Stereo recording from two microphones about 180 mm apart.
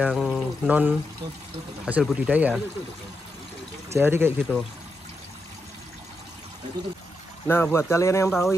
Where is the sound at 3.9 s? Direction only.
15° right (ahead or behind).